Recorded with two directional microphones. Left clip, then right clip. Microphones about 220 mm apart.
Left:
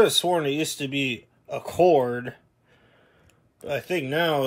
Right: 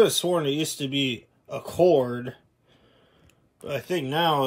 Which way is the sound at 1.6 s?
15° right (ahead or behind).